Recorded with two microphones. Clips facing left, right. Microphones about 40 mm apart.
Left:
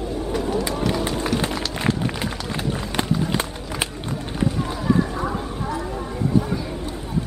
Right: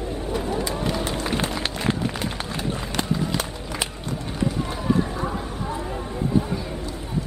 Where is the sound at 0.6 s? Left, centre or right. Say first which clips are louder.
Left 3 dB; left.